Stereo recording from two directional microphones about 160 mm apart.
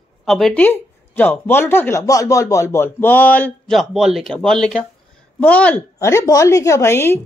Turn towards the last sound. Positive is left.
turn(degrees=15)  # may be behind; listen again after turning